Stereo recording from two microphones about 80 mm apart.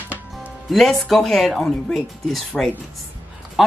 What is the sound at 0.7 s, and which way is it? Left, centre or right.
Speech, centre.